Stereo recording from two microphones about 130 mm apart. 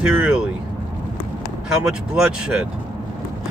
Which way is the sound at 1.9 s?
5° right (ahead or behind).